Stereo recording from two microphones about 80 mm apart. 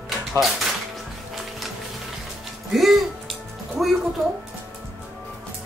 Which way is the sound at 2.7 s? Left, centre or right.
Centre.